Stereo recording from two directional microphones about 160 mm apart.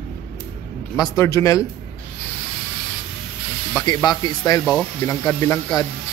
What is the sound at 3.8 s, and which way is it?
Speech, 25° left (ahead or behind).